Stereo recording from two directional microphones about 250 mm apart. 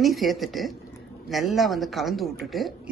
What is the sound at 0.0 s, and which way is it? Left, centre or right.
A man's voice, centre.